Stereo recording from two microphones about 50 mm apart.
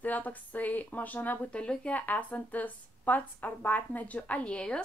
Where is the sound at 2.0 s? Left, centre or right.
Left.